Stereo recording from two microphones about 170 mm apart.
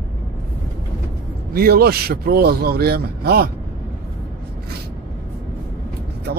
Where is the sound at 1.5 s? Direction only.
60° right (ahead or behind).